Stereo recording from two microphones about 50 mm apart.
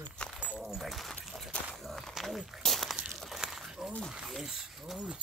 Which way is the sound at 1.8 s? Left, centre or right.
Centre.